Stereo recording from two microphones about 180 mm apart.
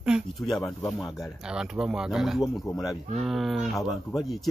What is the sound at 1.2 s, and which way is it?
Speech, 5° right (ahead or behind).